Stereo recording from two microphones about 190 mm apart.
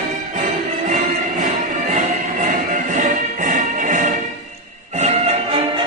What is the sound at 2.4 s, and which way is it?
Music, 40° right (ahead or behind).